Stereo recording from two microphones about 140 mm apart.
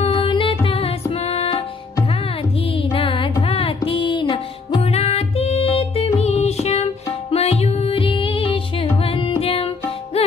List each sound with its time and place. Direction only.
0.0 s music: 40° left (ahead or behind)
2.7 s music: 40° left (ahead or behind)